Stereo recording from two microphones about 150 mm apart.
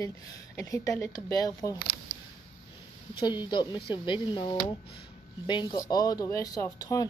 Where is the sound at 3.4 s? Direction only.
30° left (ahead or behind).